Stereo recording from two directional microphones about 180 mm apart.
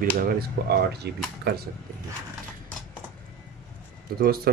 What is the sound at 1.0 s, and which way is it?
Speech, 70° right (ahead or behind).